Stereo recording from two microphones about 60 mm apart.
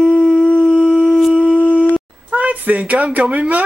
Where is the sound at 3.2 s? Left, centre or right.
Centre.